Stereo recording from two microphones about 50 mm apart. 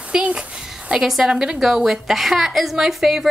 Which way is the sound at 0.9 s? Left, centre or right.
Centre.